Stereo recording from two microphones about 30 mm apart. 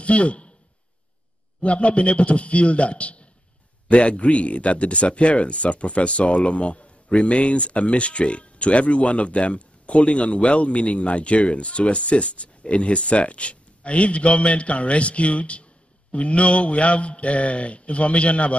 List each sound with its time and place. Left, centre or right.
0.0 s speech: left
1.6 s speech: left